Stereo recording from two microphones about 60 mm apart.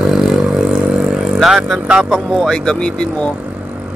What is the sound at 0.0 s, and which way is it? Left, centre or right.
Vehicle, centre.